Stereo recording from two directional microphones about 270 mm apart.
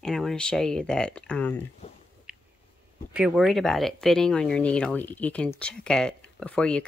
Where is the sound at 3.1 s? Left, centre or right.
Centre.